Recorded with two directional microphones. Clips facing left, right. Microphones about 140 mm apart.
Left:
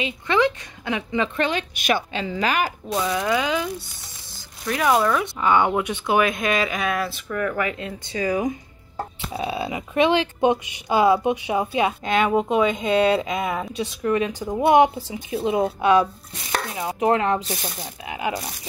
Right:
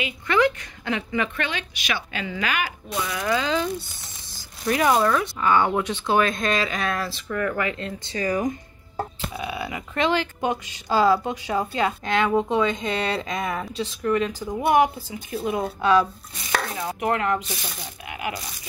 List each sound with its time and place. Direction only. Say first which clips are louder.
0.0 s speech: left 1 dB; 20° left (ahead or behind)
1.4 s speech: left 6 dB; 40° left (ahead or behind)
2.1 s speech: left 4 dB; 35° left (ahead or behind)
3.1 s speech: left 1 dB; 20° left (ahead or behind)
4.6 s speech: even; centre (ahead or behind)
5.2 s speech: left 1 dB; 20° left (ahead or behind)
9.3 s speech: left 4 dB; 30° left (ahead or behind)